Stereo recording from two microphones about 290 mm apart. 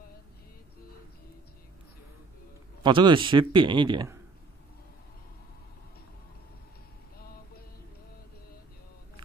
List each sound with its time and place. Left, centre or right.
2.8 s a man's voice: centre